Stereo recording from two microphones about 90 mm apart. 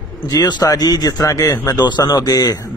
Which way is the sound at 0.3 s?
45° left (ahead or behind).